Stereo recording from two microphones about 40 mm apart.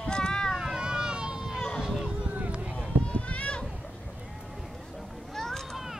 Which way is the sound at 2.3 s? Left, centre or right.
Right.